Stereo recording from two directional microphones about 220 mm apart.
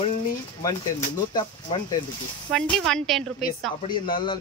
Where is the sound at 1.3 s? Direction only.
20° left (ahead or behind).